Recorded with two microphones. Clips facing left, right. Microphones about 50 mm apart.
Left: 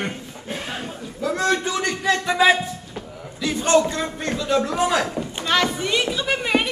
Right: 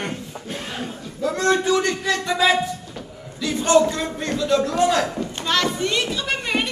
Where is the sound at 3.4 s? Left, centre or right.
Centre.